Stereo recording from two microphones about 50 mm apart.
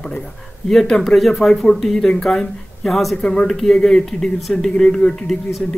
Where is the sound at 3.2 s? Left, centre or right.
Left.